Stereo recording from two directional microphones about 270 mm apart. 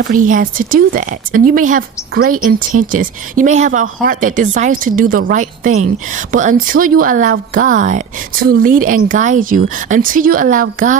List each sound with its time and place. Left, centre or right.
0.0 s speech: right
2.3 s speech: right
2.9 s a woman's voice: right